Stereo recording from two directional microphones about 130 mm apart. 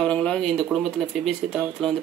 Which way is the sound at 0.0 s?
10° left (ahead or behind).